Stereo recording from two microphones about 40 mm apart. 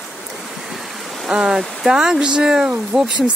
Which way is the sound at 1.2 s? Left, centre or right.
Centre.